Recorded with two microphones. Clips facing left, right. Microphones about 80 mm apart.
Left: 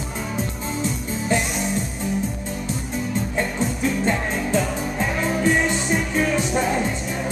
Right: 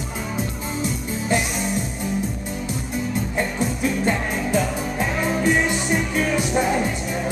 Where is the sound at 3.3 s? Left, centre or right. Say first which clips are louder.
Right 1 dB; centre.